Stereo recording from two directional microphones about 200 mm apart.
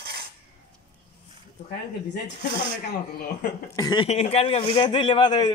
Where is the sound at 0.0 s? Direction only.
50° right (ahead or behind).